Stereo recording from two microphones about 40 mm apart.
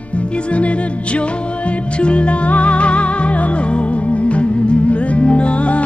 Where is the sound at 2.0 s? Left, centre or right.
Left.